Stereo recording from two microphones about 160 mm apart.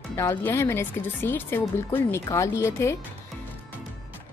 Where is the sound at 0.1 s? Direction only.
15° left (ahead or behind).